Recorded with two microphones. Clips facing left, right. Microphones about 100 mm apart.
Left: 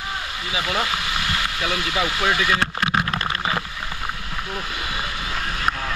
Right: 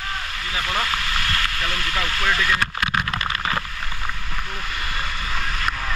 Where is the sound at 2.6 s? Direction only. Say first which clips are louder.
Left 2 dB; 25° left (ahead or behind).